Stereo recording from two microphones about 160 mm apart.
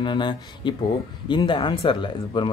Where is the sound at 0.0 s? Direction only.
30° left (ahead or behind).